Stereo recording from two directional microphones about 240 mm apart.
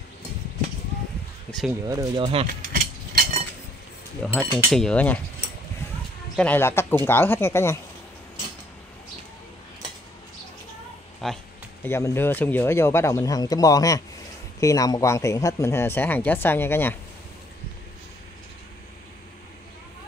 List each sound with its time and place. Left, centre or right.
1.9 s speech: centre
2.4 s a sound: right
4.3 s cutlery: centre
6.3 s speech: centre
11.2 s cutlery: centre
11.8 s speech: centre